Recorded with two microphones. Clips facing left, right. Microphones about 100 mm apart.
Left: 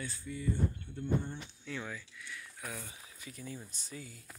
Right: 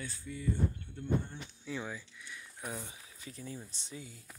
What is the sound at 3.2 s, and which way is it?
Speech, 30° right (ahead or behind).